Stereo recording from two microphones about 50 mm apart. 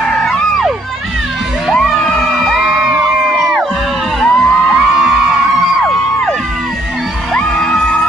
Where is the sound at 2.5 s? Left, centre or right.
Centre.